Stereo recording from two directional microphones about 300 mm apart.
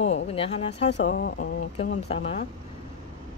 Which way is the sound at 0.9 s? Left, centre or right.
Left.